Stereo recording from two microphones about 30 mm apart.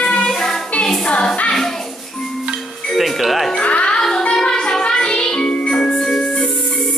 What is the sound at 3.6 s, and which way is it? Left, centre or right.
Music, left.